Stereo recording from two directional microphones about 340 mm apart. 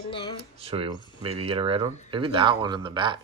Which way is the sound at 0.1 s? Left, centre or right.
Centre.